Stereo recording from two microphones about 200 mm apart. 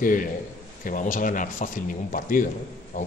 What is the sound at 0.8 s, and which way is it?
A man's voice, 40° left (ahead or behind).